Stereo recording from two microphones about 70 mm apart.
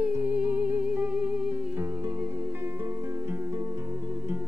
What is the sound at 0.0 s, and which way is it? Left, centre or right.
Music, right.